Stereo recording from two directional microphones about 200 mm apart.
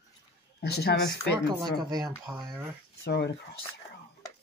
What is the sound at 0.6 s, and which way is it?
Speech, 55° left (ahead or behind).